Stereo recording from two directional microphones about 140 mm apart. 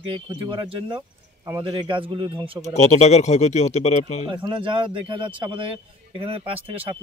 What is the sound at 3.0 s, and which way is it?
Speech, 50° left (ahead or behind).